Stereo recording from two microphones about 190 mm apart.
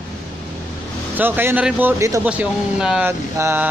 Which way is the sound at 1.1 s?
10° right (ahead or behind).